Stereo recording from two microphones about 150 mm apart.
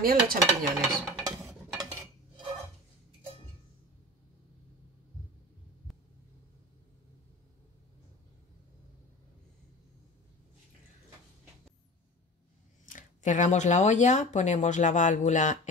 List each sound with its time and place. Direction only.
0.0 s dishes: 75° right (ahead or behind)
0.4 s stir: centre (ahead or behind)
12.8 s speech: 60° left (ahead or behind)